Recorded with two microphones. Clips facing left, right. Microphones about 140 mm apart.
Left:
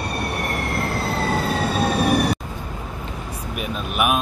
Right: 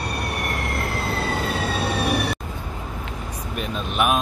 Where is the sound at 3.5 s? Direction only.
5° left (ahead or behind).